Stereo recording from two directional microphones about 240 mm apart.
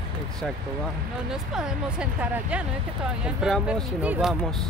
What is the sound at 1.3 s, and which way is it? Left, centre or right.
Speech, centre.